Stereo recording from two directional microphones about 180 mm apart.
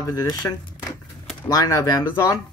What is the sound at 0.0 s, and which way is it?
Speech, 20° left (ahead or behind).